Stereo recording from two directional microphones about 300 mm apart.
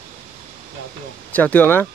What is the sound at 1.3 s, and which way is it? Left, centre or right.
Speech, centre.